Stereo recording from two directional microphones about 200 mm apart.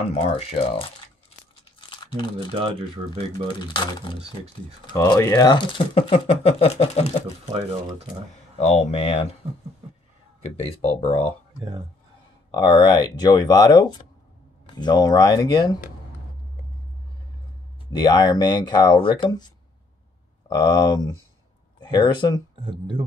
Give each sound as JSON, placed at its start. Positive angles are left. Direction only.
{"t": 0.0, "sound": "speech", "side_deg": 30}
{"t": 1.8, "sound": "crumpling", "side_deg": 25}
{"t": 2.5, "sound": "speech", "side_deg": -25}
{"t": 3.6, "sound": "speech", "side_deg": 25}
{"t": 8.5, "sound": "speech", "side_deg": 35}
{"t": 10.6, "sound": "speech", "side_deg": 30}
{"t": 12.4, "sound": "speech", "side_deg": 20}
{"t": 17.9, "sound": "speech", "side_deg": 20}
{"t": 22.6, "sound": "speech", "side_deg": -25}